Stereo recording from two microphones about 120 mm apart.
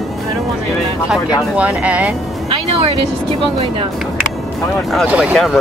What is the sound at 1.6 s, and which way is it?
Speech, 10° right (ahead or behind).